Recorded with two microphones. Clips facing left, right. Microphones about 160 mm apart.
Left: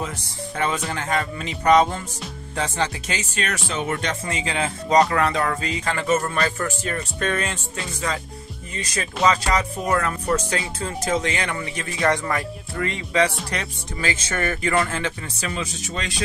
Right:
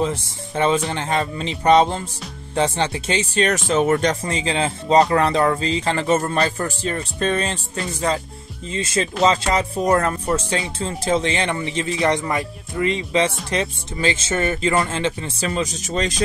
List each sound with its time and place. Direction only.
0.0 s speech: 25° right (ahead or behind)
10.2 s speech: 25° right (ahead or behind)
15.5 s speech: 35° right (ahead or behind)